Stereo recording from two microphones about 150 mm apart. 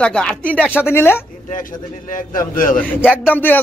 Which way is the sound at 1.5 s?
60° left (ahead or behind).